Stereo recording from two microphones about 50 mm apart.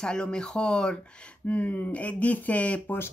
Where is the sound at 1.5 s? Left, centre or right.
Left.